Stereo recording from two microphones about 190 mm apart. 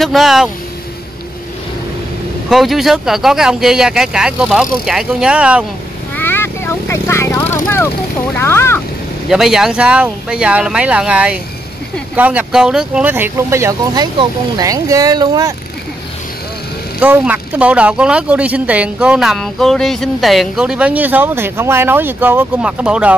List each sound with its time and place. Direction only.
0.0 s speech: centre (ahead or behind)
2.5 s speech: centre (ahead or behind)
6.1 s vehicle: 10° left (ahead or behind)
8.4 s a sound: 15° left (ahead or behind)
9.3 s speech: centre (ahead or behind); by 15.5 s 20° right (ahead or behind)
17.0 s speech: 10° right (ahead or behind)